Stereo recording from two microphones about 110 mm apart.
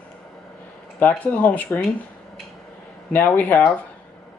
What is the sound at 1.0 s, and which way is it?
Speech, 15° left (ahead or behind).